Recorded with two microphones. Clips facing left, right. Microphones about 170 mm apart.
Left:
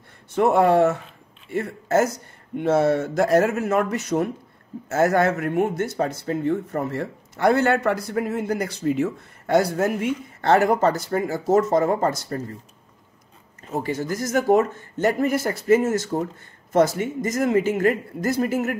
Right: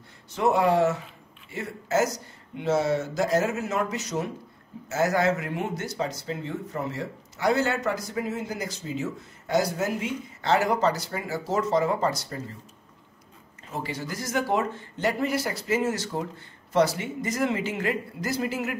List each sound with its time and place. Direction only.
0.4 s speech: 55° left (ahead or behind)
13.7 s speech: 45° left (ahead or behind)